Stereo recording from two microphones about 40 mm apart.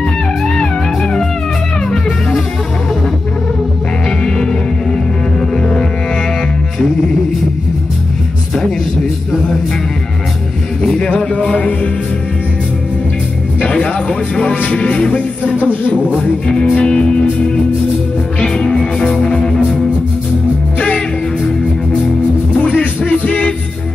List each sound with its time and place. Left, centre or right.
0.6 s music: centre
4.2 s music: centre
11.1 s music: left
13.7 s music: left
16.2 s music: left
18.4 s music: centre
22.7 s music: left